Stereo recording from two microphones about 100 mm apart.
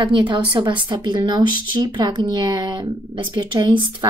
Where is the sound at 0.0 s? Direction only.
55° right (ahead or behind).